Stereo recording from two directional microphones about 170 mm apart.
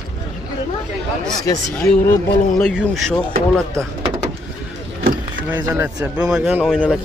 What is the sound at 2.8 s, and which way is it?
Speech, centre (ahead or behind).